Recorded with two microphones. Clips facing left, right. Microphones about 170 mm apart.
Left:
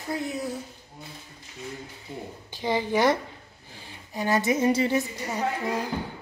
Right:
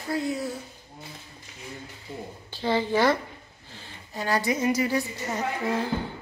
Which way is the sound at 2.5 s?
15° left (ahead or behind).